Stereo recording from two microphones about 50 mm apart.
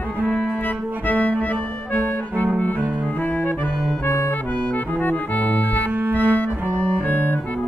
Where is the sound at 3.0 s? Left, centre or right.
Left.